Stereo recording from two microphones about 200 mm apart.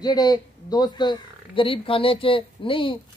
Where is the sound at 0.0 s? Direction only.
20° left (ahead or behind).